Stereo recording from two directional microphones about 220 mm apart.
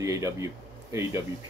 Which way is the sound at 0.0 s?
15° right (ahead or behind).